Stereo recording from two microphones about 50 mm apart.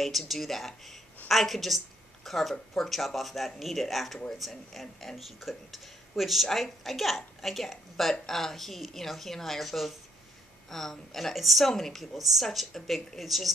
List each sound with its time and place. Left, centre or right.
0.0 s speech: centre